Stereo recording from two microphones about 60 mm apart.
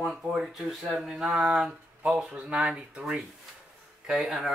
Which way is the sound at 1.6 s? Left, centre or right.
Right.